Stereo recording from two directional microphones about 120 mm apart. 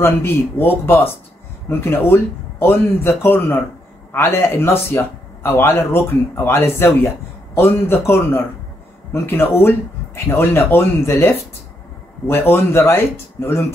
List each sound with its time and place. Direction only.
0.0 s a man's voice: 20° left (ahead or behind)